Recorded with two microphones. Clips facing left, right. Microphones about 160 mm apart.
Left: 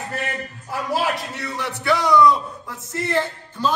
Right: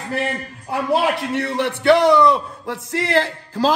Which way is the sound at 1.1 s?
60° right (ahead or behind).